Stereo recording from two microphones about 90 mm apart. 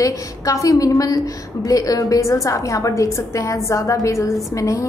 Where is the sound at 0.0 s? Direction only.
40° left (ahead or behind).